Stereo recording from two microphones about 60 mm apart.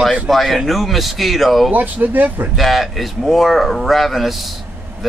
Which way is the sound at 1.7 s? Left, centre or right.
Right.